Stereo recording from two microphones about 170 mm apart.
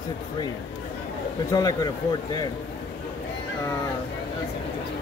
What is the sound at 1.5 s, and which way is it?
Speech, 20° left (ahead or behind).